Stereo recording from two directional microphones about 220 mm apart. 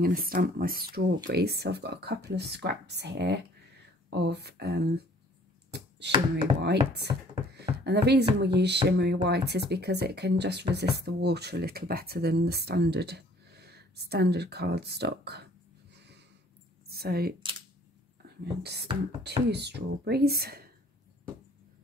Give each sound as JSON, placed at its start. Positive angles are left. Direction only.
{"t": 0.0, "sound": "speech", "side_deg": -40}
{"t": 5.7, "sound": "music", "side_deg": -50}
{"t": 6.3, "sound": "speech", "side_deg": -50}
{"t": 15.9, "sound": "snort", "side_deg": -50}
{"t": 16.8, "sound": "a sound", "side_deg": -45}
{"t": 18.4, "sound": "speech", "side_deg": -50}